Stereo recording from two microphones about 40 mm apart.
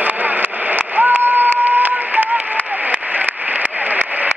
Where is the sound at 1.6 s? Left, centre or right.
Right.